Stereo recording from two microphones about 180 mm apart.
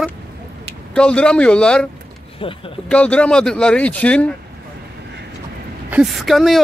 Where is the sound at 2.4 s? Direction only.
30° left (ahead or behind).